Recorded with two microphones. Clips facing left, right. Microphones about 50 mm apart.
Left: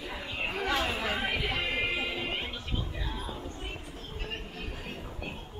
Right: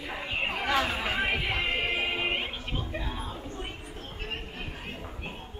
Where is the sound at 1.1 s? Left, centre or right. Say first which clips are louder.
Right 3 dB; right.